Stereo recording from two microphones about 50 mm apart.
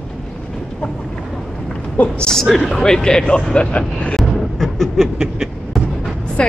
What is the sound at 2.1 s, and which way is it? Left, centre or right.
A woman's voice, centre.